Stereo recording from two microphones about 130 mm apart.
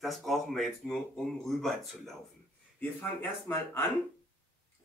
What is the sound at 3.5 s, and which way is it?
Speech, 15° left (ahead or behind).